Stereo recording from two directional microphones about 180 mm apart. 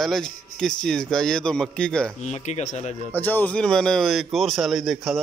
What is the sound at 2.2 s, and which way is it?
Speech, 40° left (ahead or behind).